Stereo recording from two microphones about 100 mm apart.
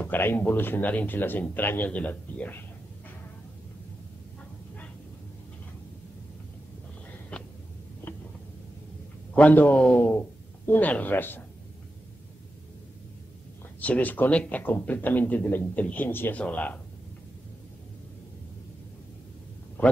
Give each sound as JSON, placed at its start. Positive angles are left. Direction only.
{"t": 0.0, "sound": "a man's voice", "side_deg": 20}
{"t": 9.3, "sound": "a man's voice", "side_deg": 15}
{"t": 13.7, "sound": "speech", "side_deg": 15}
{"t": 19.8, "sound": "speech", "side_deg": 15}